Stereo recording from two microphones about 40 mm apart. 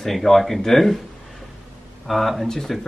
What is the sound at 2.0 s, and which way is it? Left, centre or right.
Speech, centre.